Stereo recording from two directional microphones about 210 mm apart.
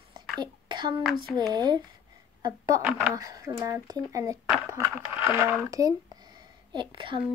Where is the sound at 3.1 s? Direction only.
15° right (ahead or behind).